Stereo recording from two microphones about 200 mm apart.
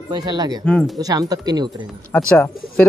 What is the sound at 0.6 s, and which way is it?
Speech, 5° left (ahead or behind).